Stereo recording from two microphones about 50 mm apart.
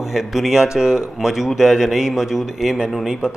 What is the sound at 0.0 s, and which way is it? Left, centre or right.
Speech, centre.